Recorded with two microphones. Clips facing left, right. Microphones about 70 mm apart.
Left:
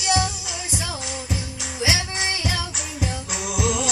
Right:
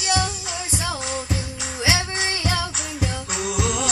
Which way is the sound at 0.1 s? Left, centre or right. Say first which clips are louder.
Left 1 dB; right.